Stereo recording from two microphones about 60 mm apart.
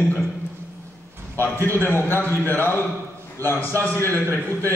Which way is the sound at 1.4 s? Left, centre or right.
Left.